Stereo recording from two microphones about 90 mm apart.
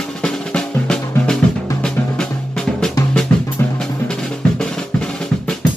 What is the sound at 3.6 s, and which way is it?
Music, 20° left (ahead or behind).